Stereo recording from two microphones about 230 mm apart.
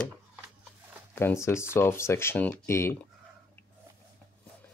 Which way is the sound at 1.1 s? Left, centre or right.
Centre.